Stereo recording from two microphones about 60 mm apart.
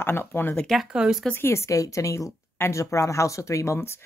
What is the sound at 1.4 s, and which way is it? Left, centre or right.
A woman's voice, left.